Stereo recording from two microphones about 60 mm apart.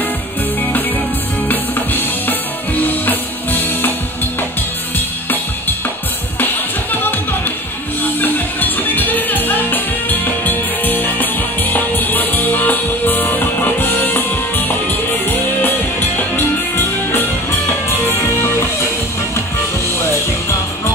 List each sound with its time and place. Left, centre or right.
1.5 s music: left
4.9 s music: left